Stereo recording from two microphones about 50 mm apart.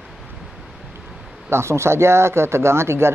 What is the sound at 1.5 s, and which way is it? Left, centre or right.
Speech, right.